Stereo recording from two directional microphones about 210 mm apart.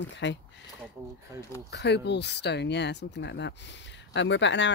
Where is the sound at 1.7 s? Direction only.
55° left (ahead or behind).